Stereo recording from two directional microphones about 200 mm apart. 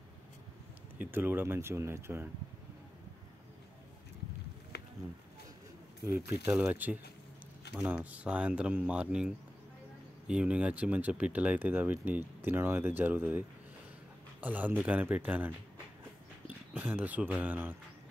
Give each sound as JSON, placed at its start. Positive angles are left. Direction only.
{"t": 0.9, "sound": "speech", "side_deg": -10}
{"t": 4.7, "sound": "a sound", "side_deg": 55}
{"t": 6.0, "sound": "speech", "side_deg": -10}